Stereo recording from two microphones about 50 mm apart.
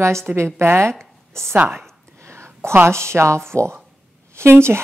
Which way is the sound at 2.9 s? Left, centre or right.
Right.